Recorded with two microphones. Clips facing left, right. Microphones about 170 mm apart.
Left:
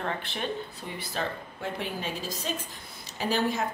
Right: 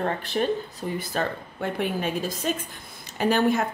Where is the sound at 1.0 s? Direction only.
55° right (ahead or behind).